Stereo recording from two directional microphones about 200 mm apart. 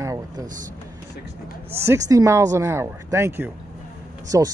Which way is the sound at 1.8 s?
15° right (ahead or behind).